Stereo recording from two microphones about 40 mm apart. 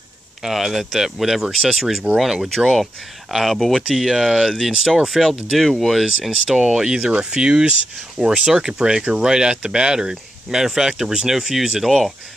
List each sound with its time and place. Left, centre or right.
0.4 s speech: centre
6.5 s speech: centre